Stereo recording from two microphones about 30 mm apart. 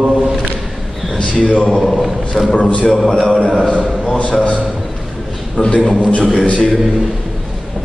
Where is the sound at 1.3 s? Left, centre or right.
Left.